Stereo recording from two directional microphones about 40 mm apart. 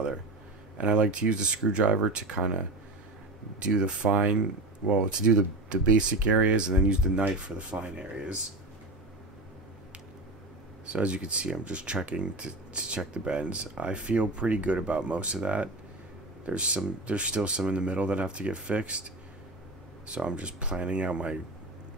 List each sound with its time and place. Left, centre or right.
0.7 s speech: right
7.7 s speech: centre
10.9 s speech: right